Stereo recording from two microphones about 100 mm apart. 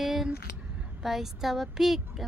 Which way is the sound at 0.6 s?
15° right (ahead or behind).